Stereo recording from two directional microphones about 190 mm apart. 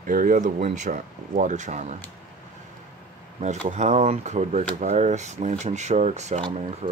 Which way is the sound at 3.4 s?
40° right (ahead or behind).